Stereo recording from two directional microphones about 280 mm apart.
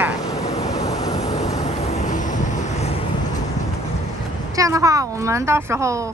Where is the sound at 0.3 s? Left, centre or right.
Centre.